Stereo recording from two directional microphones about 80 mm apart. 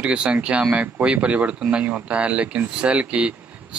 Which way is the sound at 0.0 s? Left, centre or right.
Centre.